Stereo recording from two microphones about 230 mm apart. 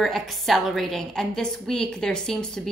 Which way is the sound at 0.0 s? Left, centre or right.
Centre.